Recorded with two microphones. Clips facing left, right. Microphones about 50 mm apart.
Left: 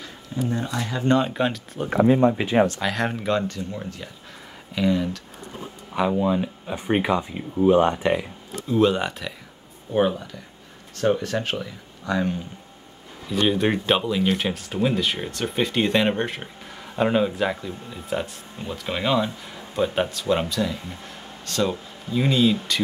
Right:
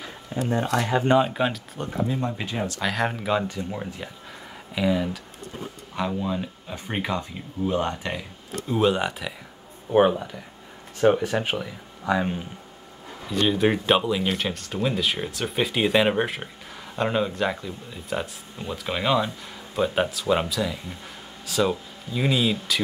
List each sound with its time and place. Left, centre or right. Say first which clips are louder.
0.3 s speech: right 2 dB; right
1.0 s speech: left 3 dB; centre
2.1 s speech: left 9 dB; left
2.8 s speech: left 1 dB; centre
5.9 s speech: left 6 dB; centre
8.7 s speech: left 2 dB; centre
9.9 s speech: right 3 dB; right
13.3 s speech: even; centre